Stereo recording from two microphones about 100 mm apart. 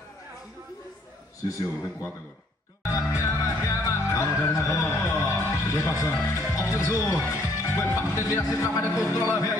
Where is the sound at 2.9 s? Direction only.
30° left (ahead or behind).